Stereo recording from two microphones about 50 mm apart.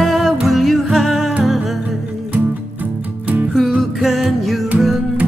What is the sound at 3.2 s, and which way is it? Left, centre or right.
Music, right.